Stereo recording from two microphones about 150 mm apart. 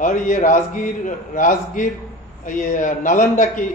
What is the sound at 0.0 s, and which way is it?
A man's voice, 60° left (ahead or behind).